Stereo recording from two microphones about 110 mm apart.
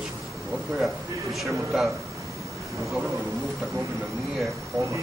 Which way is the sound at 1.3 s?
Centre (ahead or behind).